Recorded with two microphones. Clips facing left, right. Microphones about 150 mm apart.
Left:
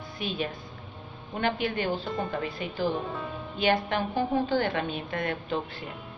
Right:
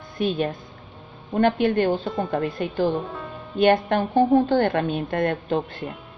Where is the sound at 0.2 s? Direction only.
50° right (ahead or behind).